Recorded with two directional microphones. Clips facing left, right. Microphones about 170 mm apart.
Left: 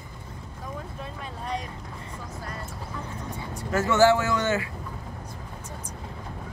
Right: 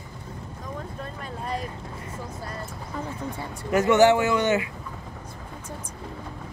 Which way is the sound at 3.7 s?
20° right (ahead or behind).